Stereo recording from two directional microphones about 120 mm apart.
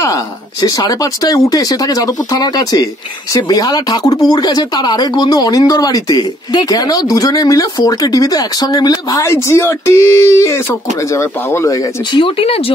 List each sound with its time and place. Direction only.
0.0 s speech: 30° left (ahead or behind)
12.1 s speech: 50° left (ahead or behind)